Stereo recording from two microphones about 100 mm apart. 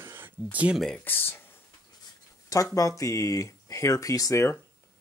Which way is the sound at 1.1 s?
20° left (ahead or behind).